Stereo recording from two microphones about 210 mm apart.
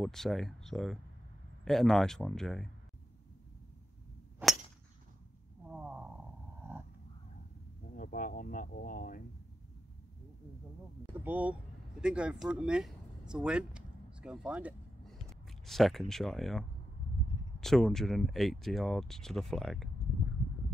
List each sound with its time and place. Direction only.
0.0 s speech: centre (ahead or behind)
5.7 s a sound: 5° right (ahead or behind)
7.9 s speech: 40° left (ahead or behind)
11.2 s speech: 5° right (ahead or behind)